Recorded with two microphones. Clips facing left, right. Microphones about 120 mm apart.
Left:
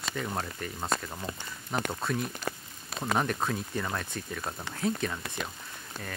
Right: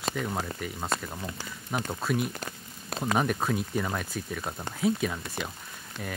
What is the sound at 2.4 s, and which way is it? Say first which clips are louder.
Speech: left 4 dB; 50° right (ahead or behind).